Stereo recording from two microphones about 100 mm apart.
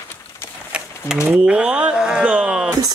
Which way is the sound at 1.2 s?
10° right (ahead or behind).